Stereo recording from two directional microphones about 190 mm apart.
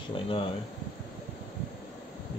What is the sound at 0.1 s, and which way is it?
Speech, 25° left (ahead or behind).